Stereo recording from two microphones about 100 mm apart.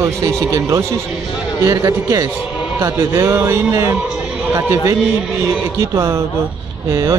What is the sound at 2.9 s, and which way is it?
Speech, 35° right (ahead or behind).